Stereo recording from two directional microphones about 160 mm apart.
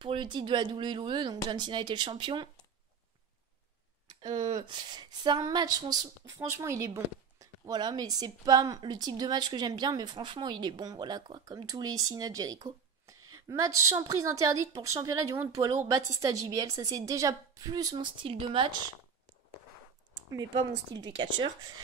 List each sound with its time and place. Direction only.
0.0 s speech: 30° right (ahead or behind)
4.3 s speech: 45° right (ahead or behind)
4.6 s a woman's voice: 30° right (ahead or behind)
20.2 s speech: 25° right (ahead or behind)